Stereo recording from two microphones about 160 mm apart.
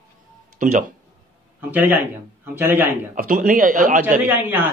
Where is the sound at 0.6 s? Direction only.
55° right (ahead or behind).